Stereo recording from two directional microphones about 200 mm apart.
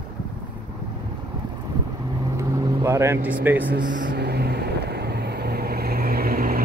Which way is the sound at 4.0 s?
55° right (ahead or behind).